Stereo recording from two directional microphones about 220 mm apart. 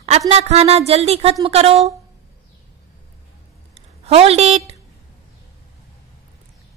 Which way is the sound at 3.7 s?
30° right (ahead or behind).